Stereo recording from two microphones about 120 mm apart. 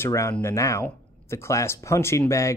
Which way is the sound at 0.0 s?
25° left (ahead or behind).